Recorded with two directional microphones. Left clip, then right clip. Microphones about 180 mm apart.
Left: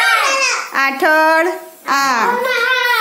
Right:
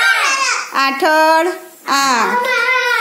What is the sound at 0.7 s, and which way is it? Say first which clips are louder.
Child singing: even; centre (ahead or behind).